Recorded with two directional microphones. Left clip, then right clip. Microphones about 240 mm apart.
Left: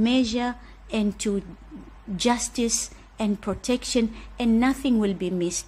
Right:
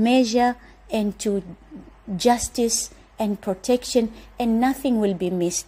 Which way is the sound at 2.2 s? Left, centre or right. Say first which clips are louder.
Right 5 dB; centre.